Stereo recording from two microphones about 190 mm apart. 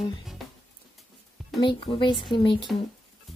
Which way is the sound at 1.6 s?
25° left (ahead or behind).